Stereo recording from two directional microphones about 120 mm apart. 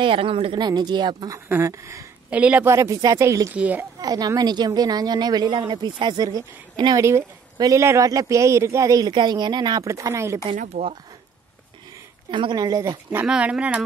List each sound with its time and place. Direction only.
0.0 s a woman's voice: 50° right (ahead or behind)
1.5 s a man's voice: 25° right (ahead or behind)
2.3 s speech: 10° right (ahead or behind)
2.7 s a man's voice: 25° right (ahead or behind)
3.5 s speech: 10° right (ahead or behind)
4.0 s a woman's voice: 35° right (ahead or behind)
10.5 s speech: 80° right
12.3 s a woman's voice: 40° right (ahead or behind)
13.1 s speech: 10° right (ahead or behind)